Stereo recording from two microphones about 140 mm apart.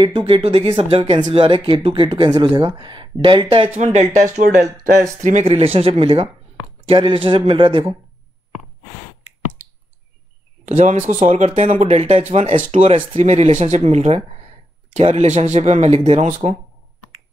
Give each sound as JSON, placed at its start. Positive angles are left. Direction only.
{"t": 0.0, "sound": "speech", "side_deg": -35}
{"t": 3.7, "sound": "speech", "side_deg": -55}
{"t": 5.2, "sound": "speech", "side_deg": -50}
{"t": 10.6, "sound": "speech", "side_deg": -65}
{"t": 12.8, "sound": "speech", "side_deg": -45}